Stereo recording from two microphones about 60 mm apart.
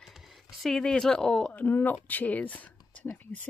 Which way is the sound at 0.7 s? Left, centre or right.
Centre.